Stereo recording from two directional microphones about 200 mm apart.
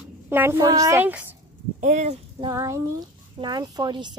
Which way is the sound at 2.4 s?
15° right (ahead or behind).